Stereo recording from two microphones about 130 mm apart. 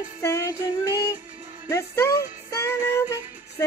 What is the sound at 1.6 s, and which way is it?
Speech, 20° left (ahead or behind).